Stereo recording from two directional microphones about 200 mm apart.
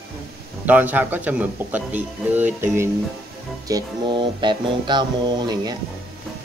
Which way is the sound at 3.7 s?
25° right (ahead or behind).